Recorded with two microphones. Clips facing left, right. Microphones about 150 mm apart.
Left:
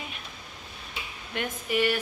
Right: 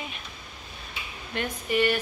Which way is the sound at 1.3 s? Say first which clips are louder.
Right 2 dB; 10° left (ahead or behind).